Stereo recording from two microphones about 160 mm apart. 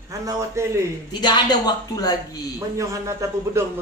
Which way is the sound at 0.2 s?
20° right (ahead or behind).